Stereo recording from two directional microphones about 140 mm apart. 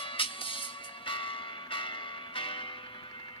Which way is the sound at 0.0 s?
40° left (ahead or behind).